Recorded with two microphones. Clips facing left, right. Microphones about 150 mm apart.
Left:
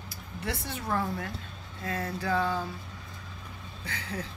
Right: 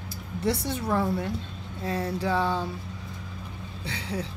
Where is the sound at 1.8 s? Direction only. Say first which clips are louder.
Right 4 dB; 30° right (ahead or behind).